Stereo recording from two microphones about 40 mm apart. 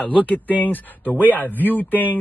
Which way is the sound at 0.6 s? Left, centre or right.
Left.